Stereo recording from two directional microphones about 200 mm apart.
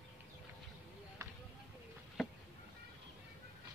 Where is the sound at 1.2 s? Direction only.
15° right (ahead or behind).